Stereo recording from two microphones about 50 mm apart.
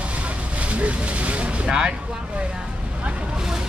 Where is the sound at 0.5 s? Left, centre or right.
Right.